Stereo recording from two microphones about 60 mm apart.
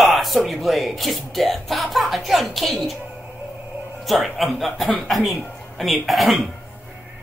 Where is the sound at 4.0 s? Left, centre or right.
Centre.